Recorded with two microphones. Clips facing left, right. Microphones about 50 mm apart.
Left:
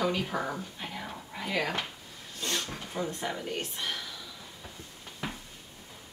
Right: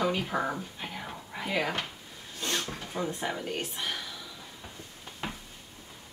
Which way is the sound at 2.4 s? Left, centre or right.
Centre.